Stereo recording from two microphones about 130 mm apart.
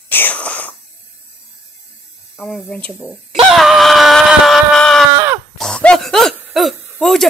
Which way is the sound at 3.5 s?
Centre (ahead or behind).